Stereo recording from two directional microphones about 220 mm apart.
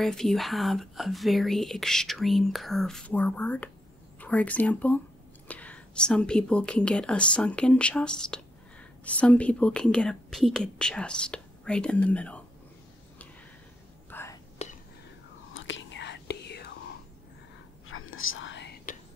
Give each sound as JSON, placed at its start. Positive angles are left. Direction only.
{"t": 0.0, "sound": "speech", "side_deg": 0}
{"t": 14.1, "sound": "whispering", "side_deg": 10}
{"t": 14.6, "sound": "whispering", "side_deg": 30}
{"t": 15.5, "sound": "whispering", "side_deg": 60}
{"t": 17.8, "sound": "whispering", "side_deg": 65}